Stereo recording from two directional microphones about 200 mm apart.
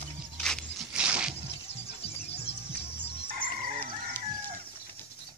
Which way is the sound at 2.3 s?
30° left (ahead or behind).